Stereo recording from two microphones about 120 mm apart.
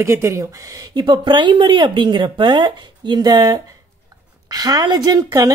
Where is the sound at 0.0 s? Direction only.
20° right (ahead or behind).